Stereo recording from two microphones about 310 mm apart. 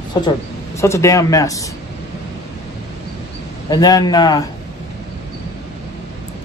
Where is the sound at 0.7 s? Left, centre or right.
Centre.